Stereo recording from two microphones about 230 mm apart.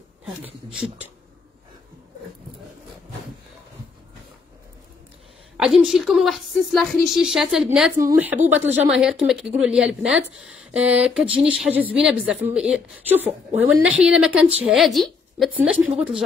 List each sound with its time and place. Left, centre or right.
5.6 s a woman's voice: centre